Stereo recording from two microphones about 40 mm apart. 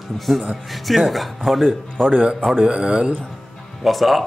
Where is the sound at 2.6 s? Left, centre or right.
Right.